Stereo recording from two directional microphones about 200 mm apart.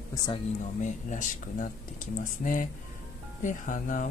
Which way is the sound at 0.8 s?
40° left (ahead or behind).